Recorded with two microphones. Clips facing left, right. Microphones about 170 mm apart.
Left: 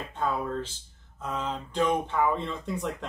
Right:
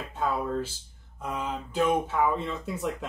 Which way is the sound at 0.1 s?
10° right (ahead or behind).